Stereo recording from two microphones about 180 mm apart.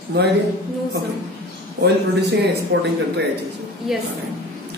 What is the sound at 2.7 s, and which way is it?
Speech, 75° right (ahead or behind).